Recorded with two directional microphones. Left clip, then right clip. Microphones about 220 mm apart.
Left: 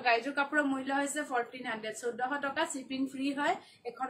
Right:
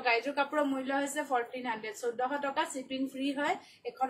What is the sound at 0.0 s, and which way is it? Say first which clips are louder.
A woman's voice: even; 15° left (ahead or behind).